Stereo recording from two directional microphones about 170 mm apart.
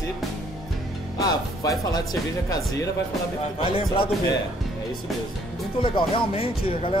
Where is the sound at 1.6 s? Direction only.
20° left (ahead or behind).